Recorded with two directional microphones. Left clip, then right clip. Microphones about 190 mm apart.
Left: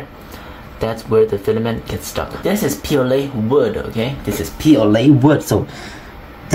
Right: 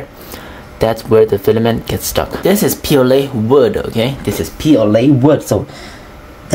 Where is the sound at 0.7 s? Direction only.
40° right (ahead or behind).